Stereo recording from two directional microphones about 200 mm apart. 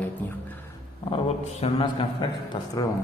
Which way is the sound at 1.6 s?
25° left (ahead or behind).